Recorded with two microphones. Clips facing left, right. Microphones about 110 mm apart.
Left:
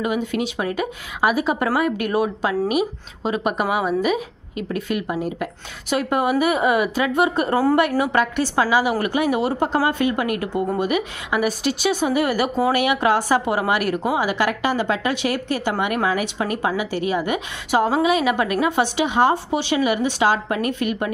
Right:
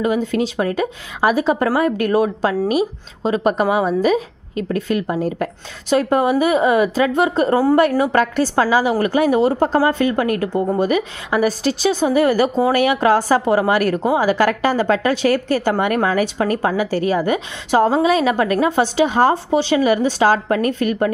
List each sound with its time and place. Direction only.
0.0 s a woman's voice: 30° right (ahead or behind)